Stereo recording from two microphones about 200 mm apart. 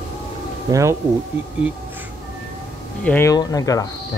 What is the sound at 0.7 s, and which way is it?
Speech, 15° right (ahead or behind).